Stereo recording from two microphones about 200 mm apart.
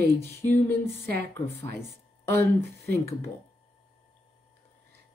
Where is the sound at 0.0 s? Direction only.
55° right (ahead or behind).